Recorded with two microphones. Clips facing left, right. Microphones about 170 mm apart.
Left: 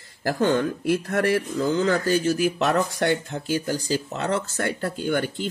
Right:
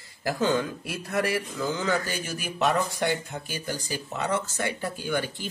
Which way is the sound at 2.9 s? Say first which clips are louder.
Left 4 dB; 70° left (ahead or behind).